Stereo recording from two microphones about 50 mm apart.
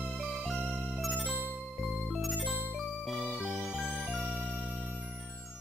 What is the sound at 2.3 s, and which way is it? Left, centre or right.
Music, left.